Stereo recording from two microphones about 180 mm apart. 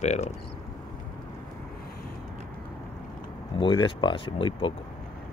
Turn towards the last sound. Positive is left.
turn(degrees=30)  # may be behind; listen again after turning